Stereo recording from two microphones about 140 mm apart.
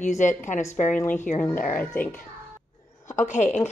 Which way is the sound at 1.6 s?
10° left (ahead or behind).